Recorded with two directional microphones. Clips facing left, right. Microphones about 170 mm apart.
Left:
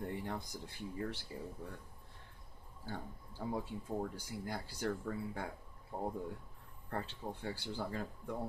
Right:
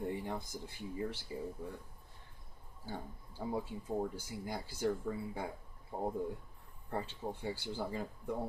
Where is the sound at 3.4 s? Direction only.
10° right (ahead or behind).